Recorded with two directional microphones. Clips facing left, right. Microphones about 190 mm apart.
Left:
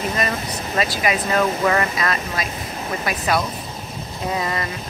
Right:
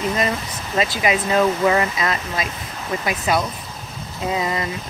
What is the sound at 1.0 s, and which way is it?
Speech, 20° right (ahead or behind).